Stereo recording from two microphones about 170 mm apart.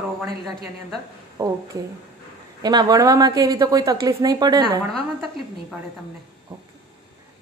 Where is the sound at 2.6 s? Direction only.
25° right (ahead or behind).